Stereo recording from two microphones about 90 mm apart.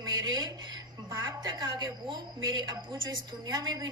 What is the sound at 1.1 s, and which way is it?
A woman's voice, 45° right (ahead or behind).